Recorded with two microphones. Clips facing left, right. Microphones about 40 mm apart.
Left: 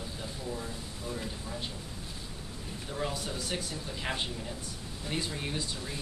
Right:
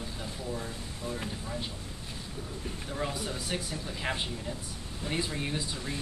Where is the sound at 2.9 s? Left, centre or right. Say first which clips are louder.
Even; centre.